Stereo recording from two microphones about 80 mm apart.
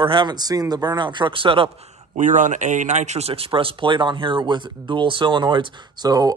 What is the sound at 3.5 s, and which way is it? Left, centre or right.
Speech, right.